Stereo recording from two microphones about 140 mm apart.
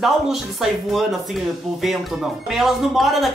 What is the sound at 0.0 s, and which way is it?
Speech, centre (ahead or behind).